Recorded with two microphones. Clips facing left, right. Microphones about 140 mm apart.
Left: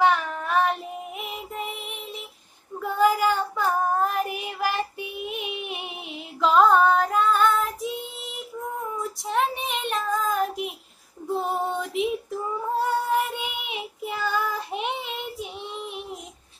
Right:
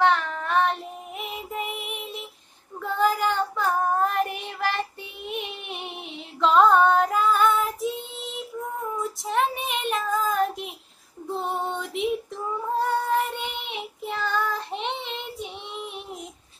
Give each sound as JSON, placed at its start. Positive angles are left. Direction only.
{"t": 0.0, "sound": "child singing", "side_deg": 5}
{"t": 5.2, "sound": "female singing", "side_deg": 5}
{"t": 9.2, "sound": "child singing", "side_deg": 0}
{"t": 11.3, "sound": "female singing", "side_deg": 0}
{"t": 13.1, "sound": "child singing", "side_deg": 5}